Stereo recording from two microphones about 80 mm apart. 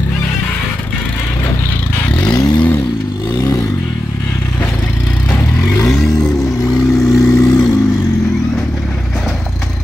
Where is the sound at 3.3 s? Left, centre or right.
Left.